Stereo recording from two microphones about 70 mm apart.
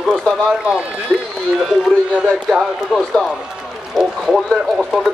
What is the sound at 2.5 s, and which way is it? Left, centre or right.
A man's voice, centre.